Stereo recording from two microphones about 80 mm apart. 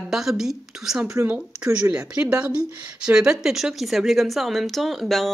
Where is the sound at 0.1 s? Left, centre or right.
Centre.